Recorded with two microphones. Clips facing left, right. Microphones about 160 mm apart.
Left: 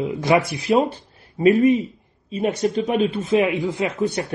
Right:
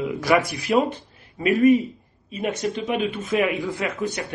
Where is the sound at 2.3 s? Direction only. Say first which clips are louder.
Left 5 dB; 35° left (ahead or behind); by 3.9 s 20° left (ahead or behind).